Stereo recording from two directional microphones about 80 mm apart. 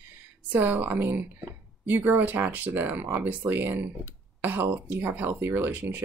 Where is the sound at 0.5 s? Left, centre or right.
Right.